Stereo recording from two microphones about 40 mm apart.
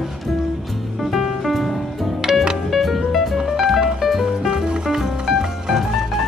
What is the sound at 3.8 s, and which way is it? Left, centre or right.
Music, centre.